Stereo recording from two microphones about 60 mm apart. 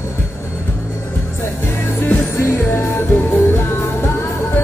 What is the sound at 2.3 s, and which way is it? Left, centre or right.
Music, left.